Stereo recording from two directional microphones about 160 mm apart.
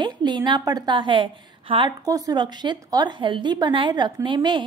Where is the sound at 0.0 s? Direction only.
25° right (ahead or behind).